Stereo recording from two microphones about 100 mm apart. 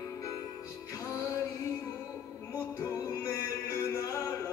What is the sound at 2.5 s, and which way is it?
Music, 25° left (ahead or behind).